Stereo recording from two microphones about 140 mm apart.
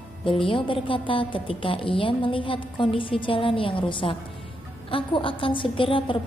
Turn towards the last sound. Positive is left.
turn(degrees=35)  # may be behind; listen again after turning